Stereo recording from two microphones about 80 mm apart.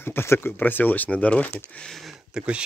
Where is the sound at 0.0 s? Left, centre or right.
Left.